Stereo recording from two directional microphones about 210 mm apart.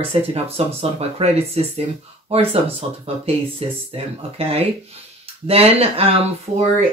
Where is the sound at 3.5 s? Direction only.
30° right (ahead or behind).